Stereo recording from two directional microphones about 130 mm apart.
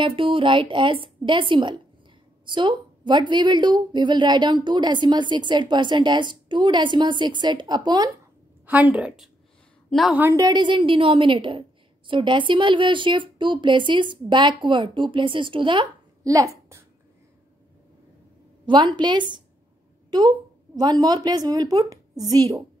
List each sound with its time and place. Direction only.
0.0 s a woman's voice: 40° right (ahead or behind)
8.6 s a woman's voice: 10° right (ahead or behind)
10.3 s a woman's voice: 30° right (ahead or behind)
16.3 s a woman's voice: 25° right (ahead or behind)
18.7 s a woman's voice: 35° right (ahead or behind)